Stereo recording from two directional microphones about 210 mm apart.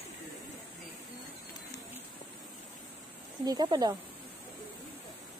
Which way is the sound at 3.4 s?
20° right (ahead or behind).